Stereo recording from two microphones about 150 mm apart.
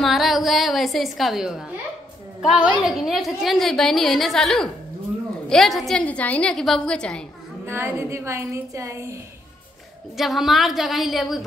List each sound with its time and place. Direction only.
0.0 s a woman's voice: centre (ahead or behind)
7.6 s speech: 15° right (ahead or behind)
10.1 s a woman's voice: centre (ahead or behind)